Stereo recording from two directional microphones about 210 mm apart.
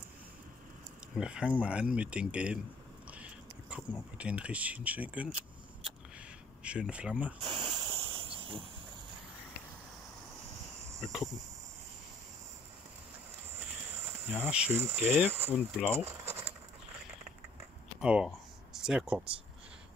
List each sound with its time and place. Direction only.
1.1 s speech: 5° right (ahead or behind)
3.1 s a sound: 5° right (ahead or behind)
4.2 s speech: 5° right (ahead or behind)
6.6 s speech: 5° right (ahead or behind)
7.4 s hiss: 20° right (ahead or behind)
11.0 s speech: centre (ahead or behind)
14.4 s speech: 10° right (ahead or behind)
16.0 s a sound: 10° right (ahead or behind)
18.0 s speech: 5° right (ahead or behind)